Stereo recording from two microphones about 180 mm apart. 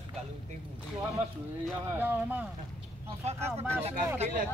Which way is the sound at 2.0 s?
10° right (ahead or behind).